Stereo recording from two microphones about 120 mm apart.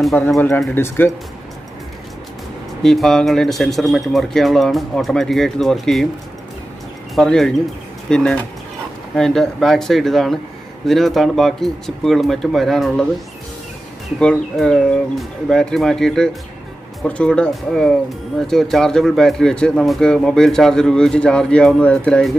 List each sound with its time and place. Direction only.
0.7 s speech: 20° left (ahead or behind)
2.8 s speech: 5° left (ahead or behind)
7.2 s speech: 5° left (ahead or behind)
14.2 s speech: 5° left (ahead or behind)